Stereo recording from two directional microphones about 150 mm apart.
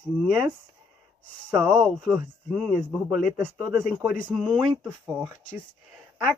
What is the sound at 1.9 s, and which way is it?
Speech, 10° right (ahead or behind).